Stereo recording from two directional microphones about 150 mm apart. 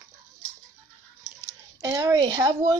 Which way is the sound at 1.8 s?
20° right (ahead or behind).